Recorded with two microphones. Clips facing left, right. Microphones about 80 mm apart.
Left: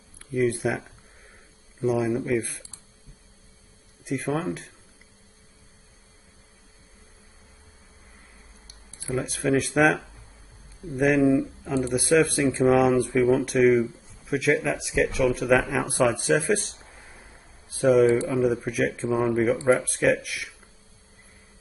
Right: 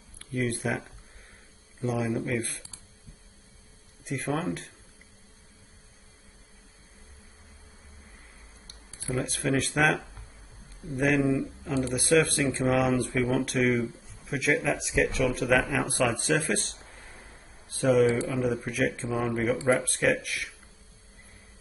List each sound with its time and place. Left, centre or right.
0.2 s speech: centre
4.0 s speech: centre
8.6 s speech: centre
11.1 s speech: centre
11.7 s speech: centre
17.2 s a sound: centre
18.1 s speech: centre